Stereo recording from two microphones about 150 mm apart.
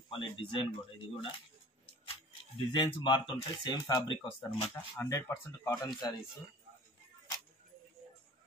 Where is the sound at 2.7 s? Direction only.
30° left (ahead or behind).